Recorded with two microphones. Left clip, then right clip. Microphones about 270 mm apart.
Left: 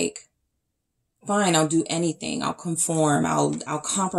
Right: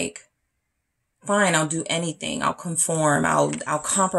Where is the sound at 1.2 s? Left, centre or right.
Right.